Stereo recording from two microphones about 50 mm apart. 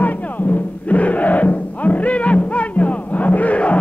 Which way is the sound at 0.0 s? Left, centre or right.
Left.